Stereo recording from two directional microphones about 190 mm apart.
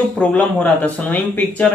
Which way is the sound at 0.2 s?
5° left (ahead or behind).